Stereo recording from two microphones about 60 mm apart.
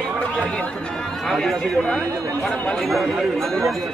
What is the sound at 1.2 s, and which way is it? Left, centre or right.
Speech, centre.